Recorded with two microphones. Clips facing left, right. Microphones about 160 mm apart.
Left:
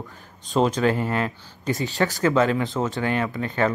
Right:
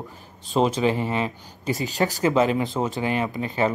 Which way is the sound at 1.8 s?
40° right (ahead or behind).